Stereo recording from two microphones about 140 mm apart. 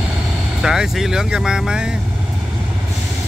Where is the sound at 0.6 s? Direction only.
5° right (ahead or behind).